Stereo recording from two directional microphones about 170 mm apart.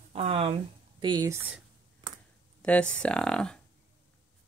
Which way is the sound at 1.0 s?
20° right (ahead or behind).